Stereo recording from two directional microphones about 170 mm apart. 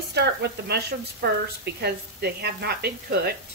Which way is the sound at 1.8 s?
75° right (ahead or behind).